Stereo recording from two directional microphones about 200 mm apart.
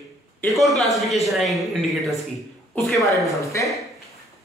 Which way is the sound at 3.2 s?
15° left (ahead or behind).